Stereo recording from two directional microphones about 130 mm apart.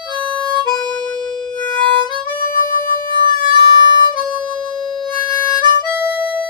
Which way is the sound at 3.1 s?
35° right (ahead or behind).